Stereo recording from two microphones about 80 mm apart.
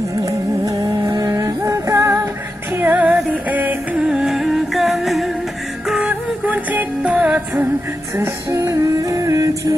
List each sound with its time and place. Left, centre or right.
1.0 s music: right
1.3 s music: right
2.7 s music: right
4.1 s music: centre
5.9 s music: centre
8.5 s music: right